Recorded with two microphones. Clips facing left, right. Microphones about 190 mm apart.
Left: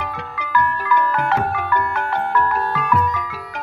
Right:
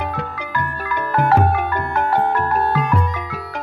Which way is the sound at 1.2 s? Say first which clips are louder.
Right 5 dB; 30° right (ahead or behind).